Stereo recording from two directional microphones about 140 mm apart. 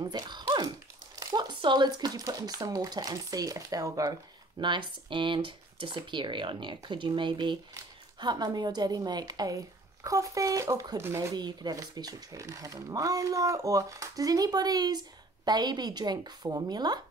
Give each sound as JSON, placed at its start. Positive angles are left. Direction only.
{"t": 0.0, "sound": "dog", "side_deg": -30}
{"t": 1.1, "sound": "speech", "side_deg": -25}
{"t": 4.6, "sound": "speech", "side_deg": -35}
{"t": 11.3, "sound": "speech", "side_deg": -30}